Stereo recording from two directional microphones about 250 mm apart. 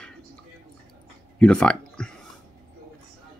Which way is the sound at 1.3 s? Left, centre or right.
Centre.